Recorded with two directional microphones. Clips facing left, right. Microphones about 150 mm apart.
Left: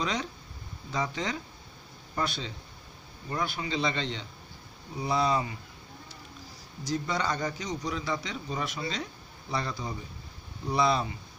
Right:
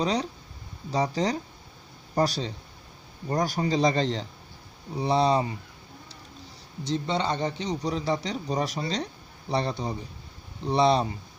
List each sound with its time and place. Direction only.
0.0 s a man's voice: 35° right (ahead or behind)
6.8 s a man's voice: 30° right (ahead or behind)